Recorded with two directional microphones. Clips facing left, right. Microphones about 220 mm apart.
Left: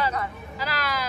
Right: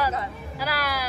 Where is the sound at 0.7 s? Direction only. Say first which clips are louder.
Right 1 dB; 10° right (ahead or behind).